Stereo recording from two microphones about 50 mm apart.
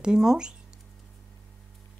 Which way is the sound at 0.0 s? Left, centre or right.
Centre.